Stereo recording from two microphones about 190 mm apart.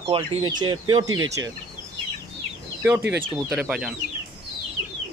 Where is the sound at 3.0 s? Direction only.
60° right (ahead or behind).